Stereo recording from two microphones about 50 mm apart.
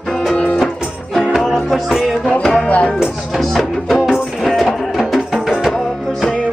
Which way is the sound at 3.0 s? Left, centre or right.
Centre.